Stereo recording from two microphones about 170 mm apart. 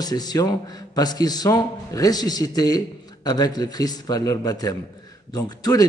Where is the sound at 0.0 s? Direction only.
25° left (ahead or behind).